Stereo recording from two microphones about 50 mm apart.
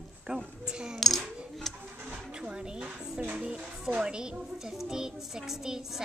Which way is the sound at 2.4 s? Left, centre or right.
Centre.